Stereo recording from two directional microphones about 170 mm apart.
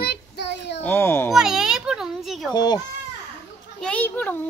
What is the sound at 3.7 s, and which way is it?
Speech, 5° left (ahead or behind).